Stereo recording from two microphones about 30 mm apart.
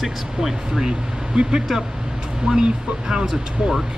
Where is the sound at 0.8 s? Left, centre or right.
Right.